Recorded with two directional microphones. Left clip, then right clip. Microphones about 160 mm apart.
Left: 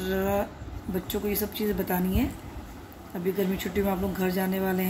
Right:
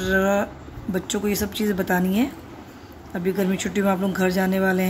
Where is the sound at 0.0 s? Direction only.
30° right (ahead or behind).